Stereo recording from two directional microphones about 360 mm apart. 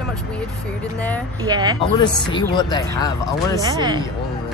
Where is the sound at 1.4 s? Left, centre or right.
Centre.